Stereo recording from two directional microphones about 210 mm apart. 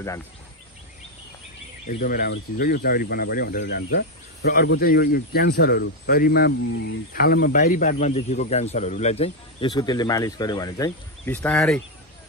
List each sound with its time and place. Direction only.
1.9 s speech: 40° left (ahead or behind); by 11.3 s 20° left (ahead or behind)
11.3 s speech: 5° left (ahead or behind)